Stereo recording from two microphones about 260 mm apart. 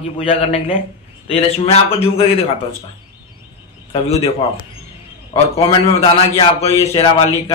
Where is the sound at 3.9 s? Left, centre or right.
Left.